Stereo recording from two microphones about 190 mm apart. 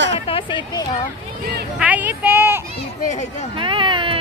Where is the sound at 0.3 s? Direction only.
25° left (ahead or behind).